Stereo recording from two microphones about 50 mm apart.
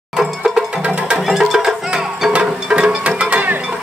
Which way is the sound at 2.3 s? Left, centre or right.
Right.